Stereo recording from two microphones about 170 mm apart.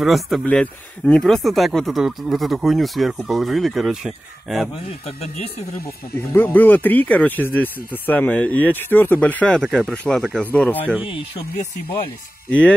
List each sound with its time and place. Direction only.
0.0 s speech: centre (ahead or behind)
6.3 s speech: 10° left (ahead or behind)
11.1 s speech: 30° left (ahead or behind)